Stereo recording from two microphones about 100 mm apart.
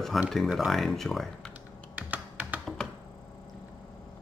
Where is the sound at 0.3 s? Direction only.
Centre (ahead or behind).